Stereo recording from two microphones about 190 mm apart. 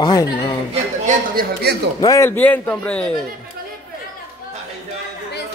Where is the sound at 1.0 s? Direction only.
50° right (ahead or behind).